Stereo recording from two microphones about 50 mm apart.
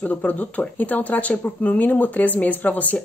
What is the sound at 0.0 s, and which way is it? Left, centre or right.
A woman's voice, left.